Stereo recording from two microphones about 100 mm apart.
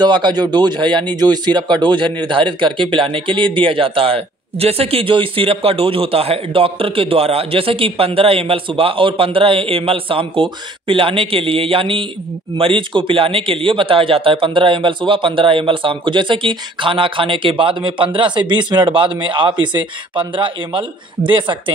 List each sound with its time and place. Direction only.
0.0 s speech: 50° right (ahead or behind)